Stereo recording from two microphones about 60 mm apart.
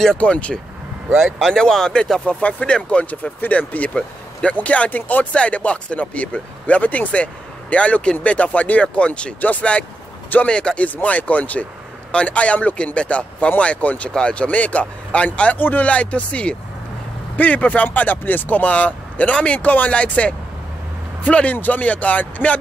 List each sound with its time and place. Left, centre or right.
0.2 s speech: centre